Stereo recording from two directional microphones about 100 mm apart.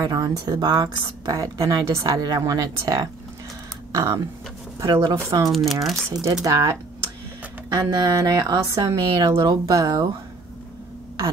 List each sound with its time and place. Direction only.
0.0 s a woman's voice: 40° right (ahead or behind)
3.9 s a woman's voice: 30° right (ahead or behind)
5.7 s speech: centre (ahead or behind)
6.4 s a woman's voice: 35° right (ahead or behind)